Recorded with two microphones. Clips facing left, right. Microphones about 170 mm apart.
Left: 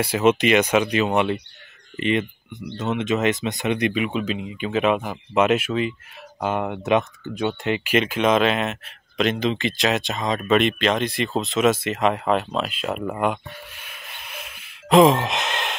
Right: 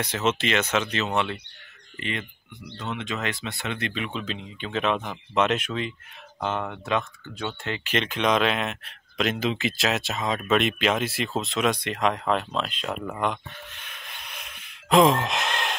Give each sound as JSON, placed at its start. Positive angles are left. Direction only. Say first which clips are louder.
{"t": 0.0, "sound": "speech", "louder": "left 7 dB", "side_deg": 10}
{"t": 6.4, "sound": "speech", "louder": "left 5 dB", "side_deg": 15}
{"t": 13.2, "sound": "gasp", "louder": "left 4 dB", "side_deg": 10}